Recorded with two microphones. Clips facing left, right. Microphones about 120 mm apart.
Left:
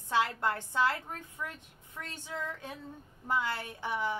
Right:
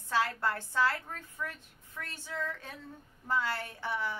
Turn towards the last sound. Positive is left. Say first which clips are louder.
# left 2 dB
turn(degrees=15)  # may be behind; listen again after turning